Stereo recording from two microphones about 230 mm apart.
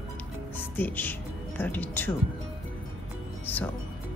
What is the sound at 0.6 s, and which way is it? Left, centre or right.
A woman's voice, centre.